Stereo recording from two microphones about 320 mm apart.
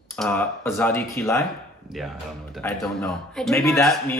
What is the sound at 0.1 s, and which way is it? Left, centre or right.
Speech, centre.